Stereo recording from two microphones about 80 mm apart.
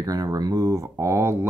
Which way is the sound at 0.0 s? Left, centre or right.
Right.